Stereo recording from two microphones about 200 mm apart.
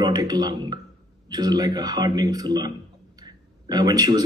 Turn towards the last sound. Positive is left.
turn(degrees=-20)  # may be behind; listen again after turning